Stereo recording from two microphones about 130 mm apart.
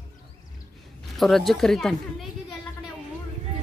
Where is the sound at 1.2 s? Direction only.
Centre (ahead or behind).